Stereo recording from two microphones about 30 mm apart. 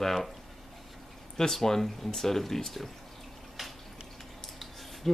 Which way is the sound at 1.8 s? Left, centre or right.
Centre.